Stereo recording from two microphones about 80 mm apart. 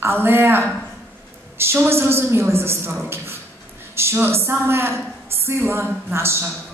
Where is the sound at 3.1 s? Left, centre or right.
Right.